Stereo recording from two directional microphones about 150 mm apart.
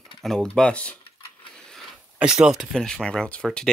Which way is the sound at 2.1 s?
5° right (ahead or behind).